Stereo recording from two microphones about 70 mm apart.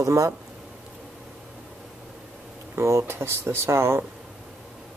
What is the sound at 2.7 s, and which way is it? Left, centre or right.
Speech, right.